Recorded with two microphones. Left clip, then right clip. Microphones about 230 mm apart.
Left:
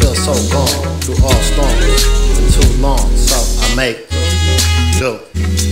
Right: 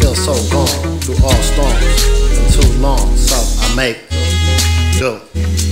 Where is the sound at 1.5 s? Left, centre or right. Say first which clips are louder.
Left 2 dB; centre.